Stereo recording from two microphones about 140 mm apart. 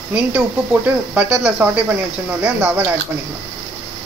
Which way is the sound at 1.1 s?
10° right (ahead or behind).